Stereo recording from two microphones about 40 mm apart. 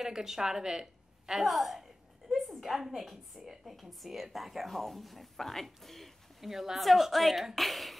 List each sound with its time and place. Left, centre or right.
0.0 s speech: centre
1.4 s a sound: centre
3.4 s a woman's voice: centre